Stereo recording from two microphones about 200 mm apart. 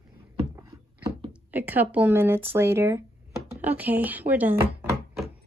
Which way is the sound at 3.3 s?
10° right (ahead or behind).